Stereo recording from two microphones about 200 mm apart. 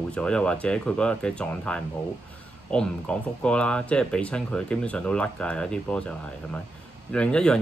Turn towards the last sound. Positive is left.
turn(degrees=5)  # may be behind; listen again after turning